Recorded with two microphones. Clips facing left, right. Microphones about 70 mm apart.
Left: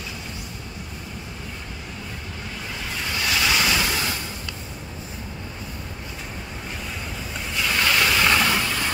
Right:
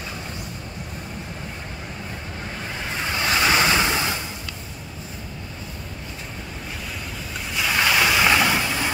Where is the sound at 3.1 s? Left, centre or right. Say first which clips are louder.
Right 3 dB; right.